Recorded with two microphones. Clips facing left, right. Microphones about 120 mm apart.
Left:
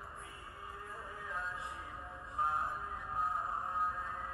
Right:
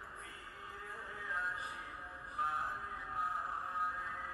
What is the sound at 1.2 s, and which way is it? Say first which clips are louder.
Music: right 1 dB; 25° left (ahead or behind).